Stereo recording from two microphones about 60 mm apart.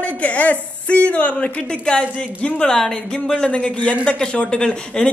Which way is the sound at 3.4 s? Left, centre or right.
Centre.